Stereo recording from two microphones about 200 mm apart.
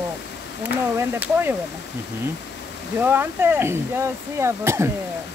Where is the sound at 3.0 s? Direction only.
10° right (ahead or behind).